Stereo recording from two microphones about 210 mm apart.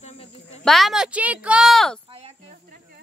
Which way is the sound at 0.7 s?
Centre (ahead or behind).